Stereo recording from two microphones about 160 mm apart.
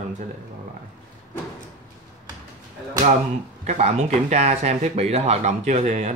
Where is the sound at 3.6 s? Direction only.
45° right (ahead or behind).